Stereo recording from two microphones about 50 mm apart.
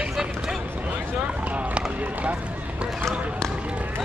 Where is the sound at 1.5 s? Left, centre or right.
Right.